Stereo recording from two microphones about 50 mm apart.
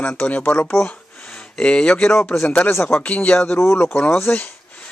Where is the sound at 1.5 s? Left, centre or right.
Centre.